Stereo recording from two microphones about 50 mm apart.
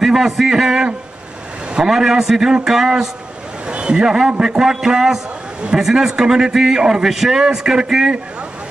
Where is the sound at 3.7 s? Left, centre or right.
Centre.